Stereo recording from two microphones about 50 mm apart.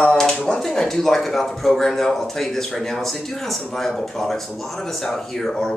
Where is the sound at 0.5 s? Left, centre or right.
Centre.